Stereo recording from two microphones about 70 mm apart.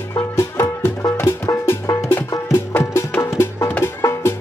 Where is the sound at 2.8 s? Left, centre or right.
Left.